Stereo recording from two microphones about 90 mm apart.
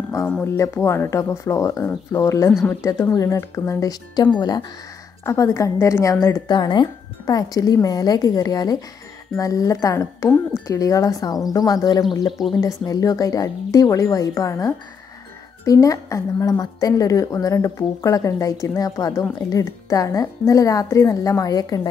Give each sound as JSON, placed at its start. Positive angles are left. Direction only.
{"t": 0.6, "sound": "a woman's voice", "side_deg": 30}
{"t": 4.4, "sound": "a woman's voice", "side_deg": 50}
{"t": 5.2, "sound": "a woman's voice", "side_deg": 35}
{"t": 6.4, "sound": "speech", "side_deg": 55}
{"t": 7.2, "sound": "a woman's voice", "side_deg": 45}
{"t": 12.5, "sound": "a woman's voice", "side_deg": 40}